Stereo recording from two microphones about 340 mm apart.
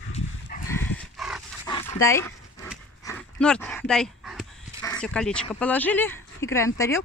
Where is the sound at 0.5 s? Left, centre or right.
Left.